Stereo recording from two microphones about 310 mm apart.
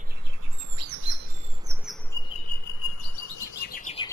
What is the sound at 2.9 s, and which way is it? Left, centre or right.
Chirp, left.